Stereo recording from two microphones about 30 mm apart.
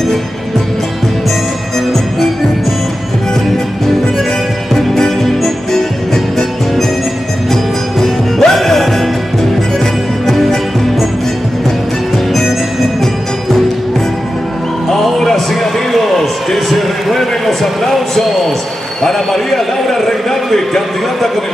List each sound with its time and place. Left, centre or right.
4.7 s music: centre
8.0 s music: centre
8.5 s music: centre
15.1 s a sound: centre